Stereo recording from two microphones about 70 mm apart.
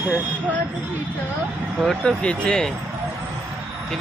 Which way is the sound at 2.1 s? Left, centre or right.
Centre.